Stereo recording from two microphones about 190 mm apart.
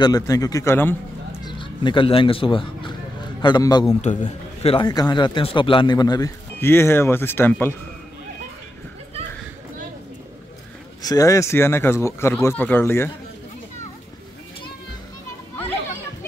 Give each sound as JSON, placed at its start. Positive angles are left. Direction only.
{"t": 0.0, "sound": "speech", "side_deg": 20}
{"t": 1.4, "sound": "a sound", "side_deg": 25}
{"t": 3.4, "sound": "speech", "side_deg": 20}
{"t": 4.0, "sound": "a man's voice", "side_deg": 40}
{"t": 4.7, "sound": "speech", "side_deg": 20}
{"t": 11.0, "sound": "speech", "side_deg": 20}